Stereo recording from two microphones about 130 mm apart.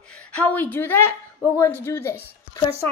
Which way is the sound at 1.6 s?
20° left (ahead or behind).